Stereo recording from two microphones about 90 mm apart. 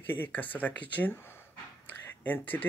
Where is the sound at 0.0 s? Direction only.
20° left (ahead or behind).